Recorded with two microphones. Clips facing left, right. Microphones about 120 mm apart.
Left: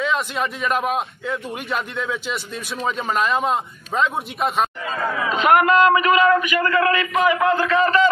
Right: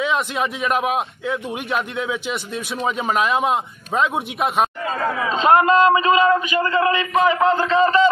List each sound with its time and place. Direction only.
0.0 s a man's voice: centre (ahead or behind)
5.3 s a man's voice: 30° right (ahead or behind)